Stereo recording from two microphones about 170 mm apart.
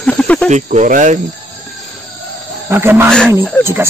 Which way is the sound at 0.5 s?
45° right (ahead or behind).